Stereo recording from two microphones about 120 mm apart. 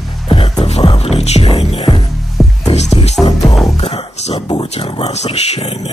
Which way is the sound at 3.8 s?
60° left (ahead or behind).